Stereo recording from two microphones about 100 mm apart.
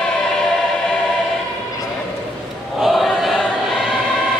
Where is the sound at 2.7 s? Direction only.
Centre (ahead or behind).